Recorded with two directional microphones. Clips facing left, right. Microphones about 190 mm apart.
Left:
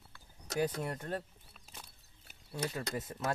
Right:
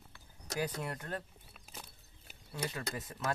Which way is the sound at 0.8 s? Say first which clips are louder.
Left 2 dB; 25° left (ahead or behind).